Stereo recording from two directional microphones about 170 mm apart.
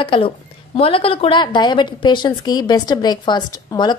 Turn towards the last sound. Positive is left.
turn(degrees=25)  # may be behind; listen again after turning